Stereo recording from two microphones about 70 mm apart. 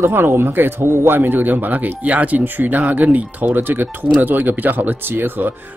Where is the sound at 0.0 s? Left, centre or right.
Right.